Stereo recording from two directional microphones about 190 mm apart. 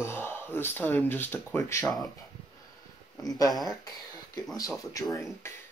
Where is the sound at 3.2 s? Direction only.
20° left (ahead or behind).